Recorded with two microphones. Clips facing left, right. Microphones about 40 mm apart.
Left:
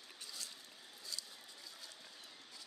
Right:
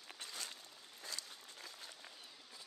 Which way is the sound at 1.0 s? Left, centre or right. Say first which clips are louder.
Right 1 dB; right.